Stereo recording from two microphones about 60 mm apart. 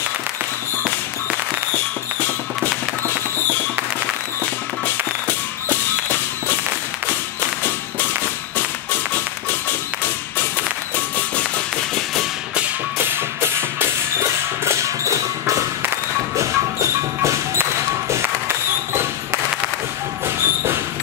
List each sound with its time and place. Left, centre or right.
2.2 s music: left
5.7 s whip: left
8.5 s music: left
13.0 s music: right
16.3 s a sound: right
20.2 s squeak: right